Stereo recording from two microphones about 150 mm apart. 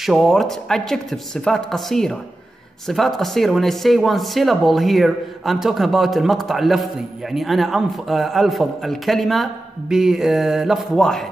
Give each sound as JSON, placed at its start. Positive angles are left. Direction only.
{"t": 0.0, "sound": "speech", "side_deg": 0}